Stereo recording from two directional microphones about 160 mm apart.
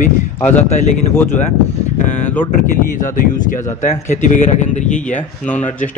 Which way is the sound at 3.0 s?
55° left (ahead or behind).